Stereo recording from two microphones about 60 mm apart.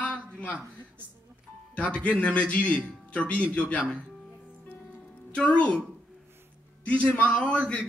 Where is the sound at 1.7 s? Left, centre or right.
Left.